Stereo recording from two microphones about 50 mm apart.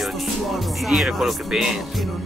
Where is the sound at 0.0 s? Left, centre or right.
Centre.